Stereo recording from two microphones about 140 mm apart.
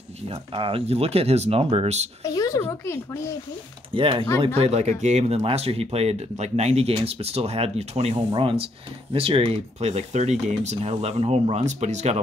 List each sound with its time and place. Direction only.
0.3 s speech: 40° right (ahead or behind)
2.3 s a sound: 25° left (ahead or behind)
2.8 s speech: 20° left (ahead or behind)
3.9 s speech: 40° right (ahead or behind)
4.6 s speech: 50° right (ahead or behind)